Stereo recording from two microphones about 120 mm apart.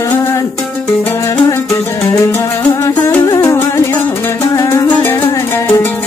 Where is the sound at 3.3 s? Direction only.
25° left (ahead or behind).